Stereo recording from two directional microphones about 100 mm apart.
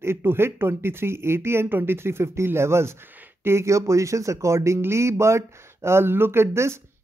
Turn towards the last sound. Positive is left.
turn(degrees=-25)  # may be behind; listen again after turning